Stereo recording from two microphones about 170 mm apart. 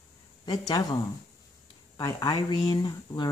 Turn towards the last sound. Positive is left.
turn(degrees=25)  # may be behind; listen again after turning